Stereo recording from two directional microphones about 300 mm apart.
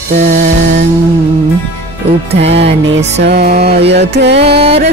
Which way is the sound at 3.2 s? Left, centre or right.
Right.